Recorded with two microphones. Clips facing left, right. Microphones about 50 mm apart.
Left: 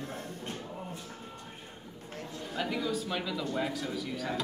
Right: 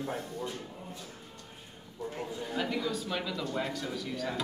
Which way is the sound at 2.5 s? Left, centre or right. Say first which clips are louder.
Left 1 dB; centre.